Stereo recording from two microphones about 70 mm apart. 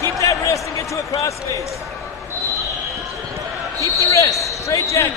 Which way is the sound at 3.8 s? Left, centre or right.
Left.